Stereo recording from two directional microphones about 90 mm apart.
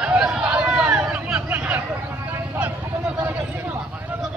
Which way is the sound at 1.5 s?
20° right (ahead or behind).